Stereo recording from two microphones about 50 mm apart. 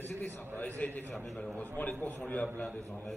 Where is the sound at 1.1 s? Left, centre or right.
Centre.